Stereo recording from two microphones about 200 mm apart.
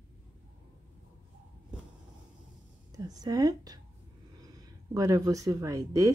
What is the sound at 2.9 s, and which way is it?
A woman's voice, 20° right (ahead or behind).